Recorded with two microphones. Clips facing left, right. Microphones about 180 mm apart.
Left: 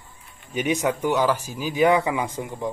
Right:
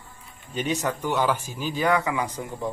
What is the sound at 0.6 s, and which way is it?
Speech, 10° left (ahead or behind).